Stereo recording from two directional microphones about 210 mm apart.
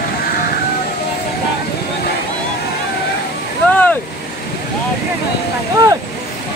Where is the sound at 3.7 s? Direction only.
10° left (ahead or behind).